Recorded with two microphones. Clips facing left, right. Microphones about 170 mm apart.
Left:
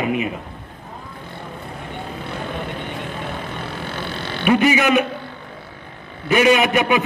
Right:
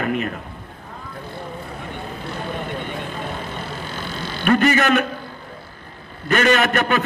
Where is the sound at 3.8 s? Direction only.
65° left (ahead or behind).